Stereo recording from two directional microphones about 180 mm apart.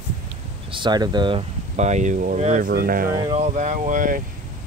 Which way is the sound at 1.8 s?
40° right (ahead or behind).